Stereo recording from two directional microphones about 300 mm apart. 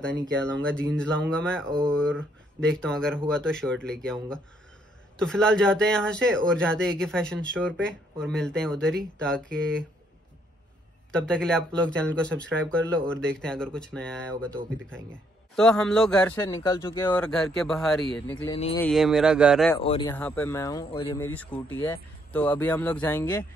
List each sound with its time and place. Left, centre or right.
0.3 s speech: centre
11.1 s speech: centre
17.2 s speech: centre
19.8 s speech: centre
20.2 s speech: centre